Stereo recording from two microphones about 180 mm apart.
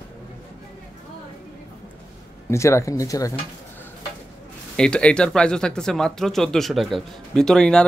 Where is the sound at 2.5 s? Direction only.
15° left (ahead or behind).